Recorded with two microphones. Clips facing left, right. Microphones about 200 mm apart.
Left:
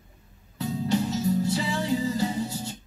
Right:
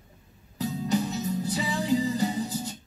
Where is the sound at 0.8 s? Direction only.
35° left (ahead or behind).